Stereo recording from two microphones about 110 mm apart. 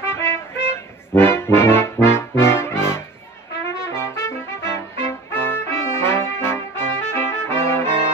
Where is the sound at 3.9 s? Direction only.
25° left (ahead or behind).